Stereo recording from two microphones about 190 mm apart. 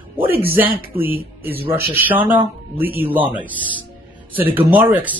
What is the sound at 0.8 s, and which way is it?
Speech, 50° right (ahead or behind).